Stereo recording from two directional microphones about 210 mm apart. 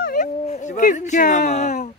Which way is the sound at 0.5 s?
35° left (ahead or behind).